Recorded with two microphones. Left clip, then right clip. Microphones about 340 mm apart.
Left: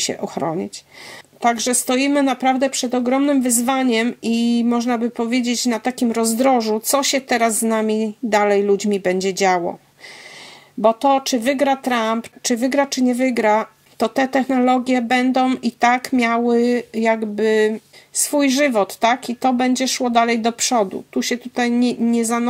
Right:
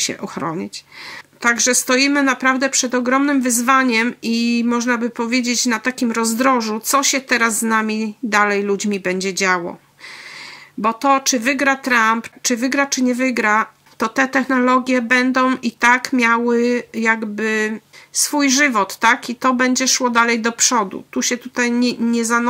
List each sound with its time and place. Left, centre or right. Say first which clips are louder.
0.0 s speech: left 1 dB; centre
10.8 s speech: left 1 dB; centre